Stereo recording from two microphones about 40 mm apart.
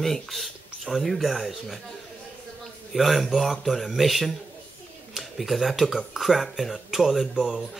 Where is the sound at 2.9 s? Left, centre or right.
Centre.